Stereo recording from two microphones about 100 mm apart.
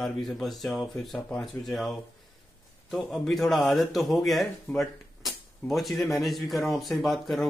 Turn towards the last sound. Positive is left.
turn(degrees=0)  # may be behind; listen again after turning